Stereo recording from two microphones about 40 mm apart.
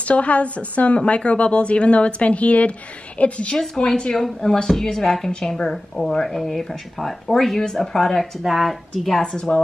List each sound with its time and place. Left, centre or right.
0.0 s a woman's voice: left
3.5 s a woman's voice: centre